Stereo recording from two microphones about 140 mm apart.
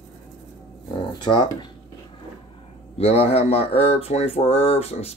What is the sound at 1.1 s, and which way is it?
Speech, 30° left (ahead or behind).